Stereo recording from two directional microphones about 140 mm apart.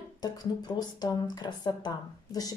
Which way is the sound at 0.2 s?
30° left (ahead or behind).